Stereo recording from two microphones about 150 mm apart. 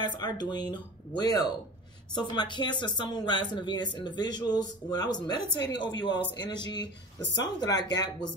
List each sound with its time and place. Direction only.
0.0 s speech: 30° left (ahead or behind)